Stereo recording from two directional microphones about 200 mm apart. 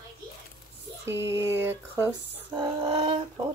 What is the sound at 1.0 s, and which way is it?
Speech, 15° right (ahead or behind).